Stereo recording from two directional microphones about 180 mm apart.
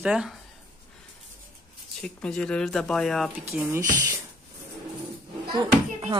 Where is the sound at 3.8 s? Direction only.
45° right (ahead or behind).